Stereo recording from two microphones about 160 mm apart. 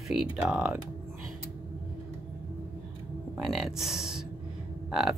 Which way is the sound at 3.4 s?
Centre (ahead or behind).